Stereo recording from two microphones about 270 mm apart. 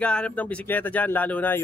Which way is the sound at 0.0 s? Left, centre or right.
Centre.